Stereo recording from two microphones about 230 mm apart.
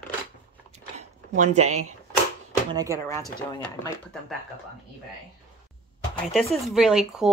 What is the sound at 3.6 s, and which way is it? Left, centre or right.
Speech, centre.